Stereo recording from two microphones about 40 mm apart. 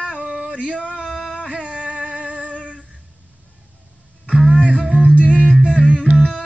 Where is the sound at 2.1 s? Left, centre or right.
Right.